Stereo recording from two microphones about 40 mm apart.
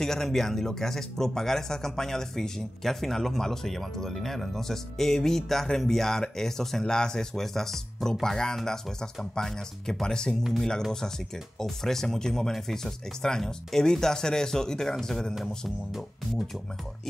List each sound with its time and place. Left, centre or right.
0.0 s speech: centre
11.6 s speech: centre